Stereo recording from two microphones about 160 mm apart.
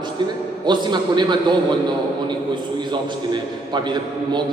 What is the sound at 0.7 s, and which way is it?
Speech, 30° right (ahead or behind).